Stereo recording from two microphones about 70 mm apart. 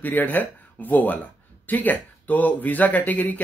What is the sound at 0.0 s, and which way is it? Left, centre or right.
Speech, left.